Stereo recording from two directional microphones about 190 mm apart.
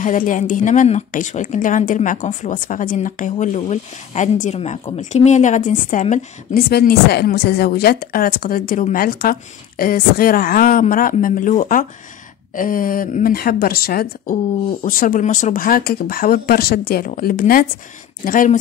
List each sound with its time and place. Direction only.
0.0 s a woman's voice: 40° left (ahead or behind)
6.7 s a woman's voice: 55° left (ahead or behind)